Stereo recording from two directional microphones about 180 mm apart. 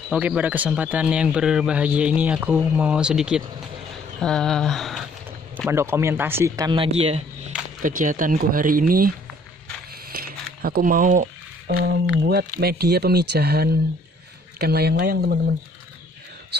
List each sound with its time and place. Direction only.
0.1 s speech: 5° right (ahead or behind)
5.7 s speech: 15° right (ahead or behind); by 7.5 s 35° right (ahead or behind)
7.8 s speech: 50° right (ahead or behind)
10.1 s a sound: 55° right (ahead or behind)
12.2 s speech: 60° right (ahead or behind)